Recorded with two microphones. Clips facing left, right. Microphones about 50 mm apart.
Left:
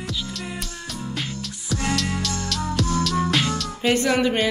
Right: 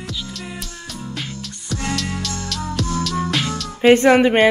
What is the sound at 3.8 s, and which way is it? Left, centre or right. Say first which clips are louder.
Speech: right 8 dB; right.